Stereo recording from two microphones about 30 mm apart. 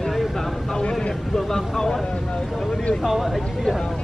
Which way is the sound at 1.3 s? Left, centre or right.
Centre.